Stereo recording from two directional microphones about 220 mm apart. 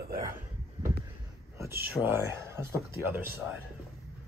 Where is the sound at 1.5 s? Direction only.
10° right (ahead or behind).